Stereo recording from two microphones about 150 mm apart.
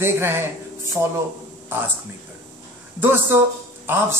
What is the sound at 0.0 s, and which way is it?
Speech, 15° right (ahead or behind).